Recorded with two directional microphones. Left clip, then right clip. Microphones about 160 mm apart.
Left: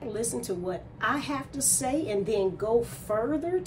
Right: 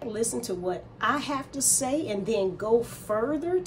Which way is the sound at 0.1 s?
15° right (ahead or behind).